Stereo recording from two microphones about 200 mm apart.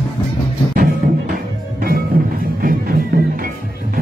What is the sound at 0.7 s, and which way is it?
Music, 50° right (ahead or behind).